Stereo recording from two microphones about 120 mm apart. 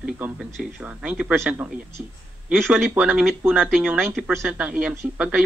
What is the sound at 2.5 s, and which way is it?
Speech, centre (ahead or behind).